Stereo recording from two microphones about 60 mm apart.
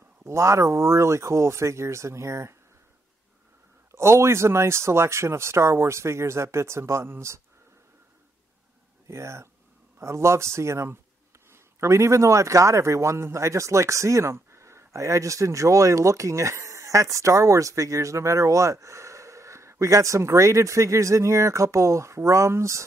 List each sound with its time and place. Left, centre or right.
0.2 s speech: right
3.9 s speech: right
9.0 s a man's voice: right